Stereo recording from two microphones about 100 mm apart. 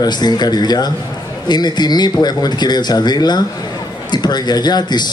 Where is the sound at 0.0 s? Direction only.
45° left (ahead or behind).